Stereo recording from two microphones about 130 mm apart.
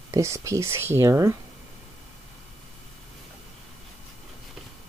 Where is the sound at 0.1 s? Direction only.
25° right (ahead or behind).